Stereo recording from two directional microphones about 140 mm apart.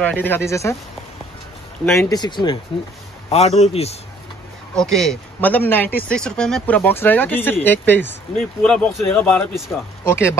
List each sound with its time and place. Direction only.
0.0 s speech: 15° left (ahead or behind)
1.9 s speech: 20° left (ahead or behind)
2.1 s speech: 30° left (ahead or behind)
3.3 s a man's voice: 50° left (ahead or behind)
4.7 s speech: centre (ahead or behind)
5.4 s speech: 15° left (ahead or behind)